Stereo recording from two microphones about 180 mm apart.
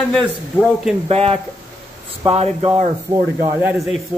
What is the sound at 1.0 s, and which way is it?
Speech, 35° right (ahead or behind).